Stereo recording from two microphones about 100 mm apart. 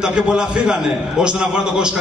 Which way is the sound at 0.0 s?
10° right (ahead or behind).